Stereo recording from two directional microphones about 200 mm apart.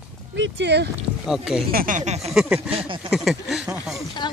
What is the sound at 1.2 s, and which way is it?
Speech, centre (ahead or behind).